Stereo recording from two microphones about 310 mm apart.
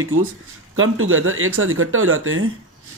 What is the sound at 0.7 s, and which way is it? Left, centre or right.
Speech, right.